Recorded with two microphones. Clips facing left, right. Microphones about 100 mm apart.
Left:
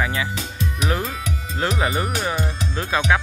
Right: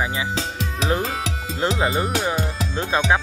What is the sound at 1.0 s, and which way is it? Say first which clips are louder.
Speech: right 2 dB; 90° right.